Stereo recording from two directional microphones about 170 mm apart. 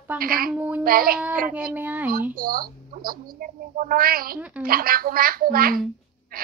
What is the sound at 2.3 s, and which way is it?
A woman's voice, 55° right (ahead or behind).